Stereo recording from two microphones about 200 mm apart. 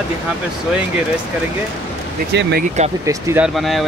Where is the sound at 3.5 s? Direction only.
Centre (ahead or behind).